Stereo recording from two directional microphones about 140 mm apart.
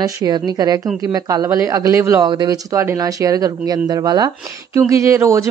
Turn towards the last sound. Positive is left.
turn(degrees=-20)  # may be behind; listen again after turning